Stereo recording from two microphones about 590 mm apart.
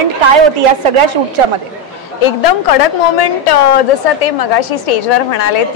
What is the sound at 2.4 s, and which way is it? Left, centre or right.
A woman's voice, left.